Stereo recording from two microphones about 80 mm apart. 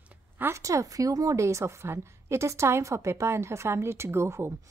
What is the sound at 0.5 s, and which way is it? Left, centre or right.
A woman's voice, right.